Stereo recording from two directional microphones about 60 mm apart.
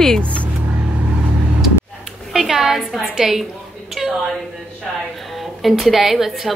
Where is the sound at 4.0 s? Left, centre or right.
Centre.